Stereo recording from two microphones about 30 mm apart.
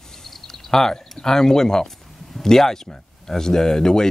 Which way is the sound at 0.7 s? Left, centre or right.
Centre.